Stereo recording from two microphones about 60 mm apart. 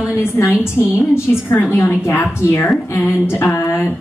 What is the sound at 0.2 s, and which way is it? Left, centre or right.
A woman's voice, left.